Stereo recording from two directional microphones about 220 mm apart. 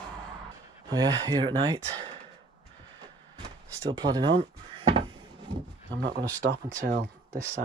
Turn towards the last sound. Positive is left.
turn(degrees=-40)  # may be behind; listen again after turning